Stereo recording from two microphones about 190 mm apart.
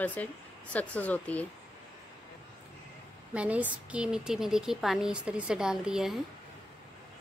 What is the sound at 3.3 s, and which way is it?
A woman's voice, 5° right (ahead or behind).